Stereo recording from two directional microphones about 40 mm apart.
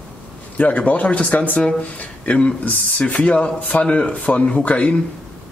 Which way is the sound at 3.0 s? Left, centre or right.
Left.